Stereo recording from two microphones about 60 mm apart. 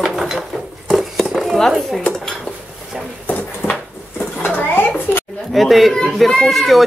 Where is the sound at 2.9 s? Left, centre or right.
Centre.